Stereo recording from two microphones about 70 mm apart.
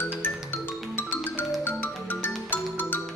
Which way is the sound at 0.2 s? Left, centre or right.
Left.